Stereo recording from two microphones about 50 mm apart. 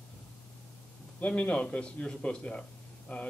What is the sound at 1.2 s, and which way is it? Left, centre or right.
Speech, left.